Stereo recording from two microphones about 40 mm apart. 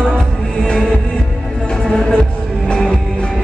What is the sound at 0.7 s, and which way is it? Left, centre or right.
Music, centre.